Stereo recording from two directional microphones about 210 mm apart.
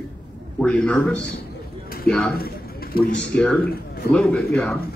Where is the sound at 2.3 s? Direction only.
45° left (ahead or behind).